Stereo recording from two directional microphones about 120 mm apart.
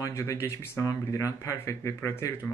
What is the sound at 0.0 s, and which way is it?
Speech, 25° left (ahead or behind).